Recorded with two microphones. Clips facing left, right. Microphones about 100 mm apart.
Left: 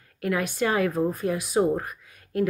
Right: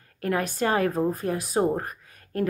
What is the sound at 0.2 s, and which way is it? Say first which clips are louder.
Speech: even; 40° right (ahead or behind).